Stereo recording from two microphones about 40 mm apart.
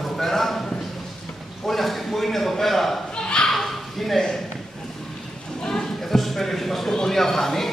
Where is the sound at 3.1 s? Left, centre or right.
Left.